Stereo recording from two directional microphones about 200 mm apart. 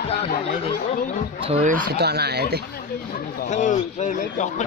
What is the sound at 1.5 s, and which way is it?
Speech, 35° right (ahead or behind).